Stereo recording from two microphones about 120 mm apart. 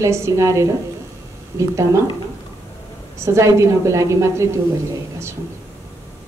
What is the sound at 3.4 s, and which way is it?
A woman's voice, 25° right (ahead or behind).